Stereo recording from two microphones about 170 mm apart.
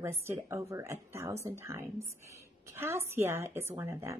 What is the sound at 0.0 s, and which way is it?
A woman's voice, 15° right (ahead or behind).